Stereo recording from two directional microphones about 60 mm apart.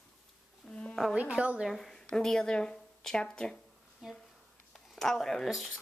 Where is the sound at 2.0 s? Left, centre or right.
Centre.